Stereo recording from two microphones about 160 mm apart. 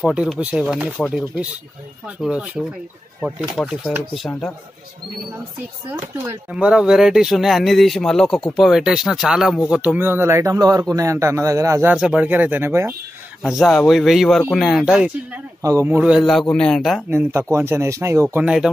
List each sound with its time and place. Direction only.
0.0 s speech: 5° right (ahead or behind)
5.9 s speech: 15° right (ahead or behind)
11.9 s speech: 5° right (ahead or behind)
13.4 s speech: centre (ahead or behind)
15.6 s speech: 20° right (ahead or behind); by 17.0 s centre (ahead or behind)
17.1 s speech: 15° right (ahead or behind)